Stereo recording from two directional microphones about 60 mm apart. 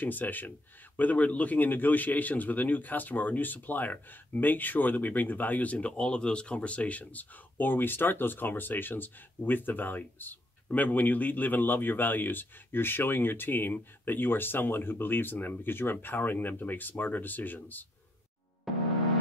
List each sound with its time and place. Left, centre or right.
0.0 s a man's voice: left
18.7 s music: centre